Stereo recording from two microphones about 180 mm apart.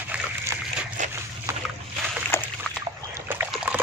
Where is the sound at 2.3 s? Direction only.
10° left (ahead or behind).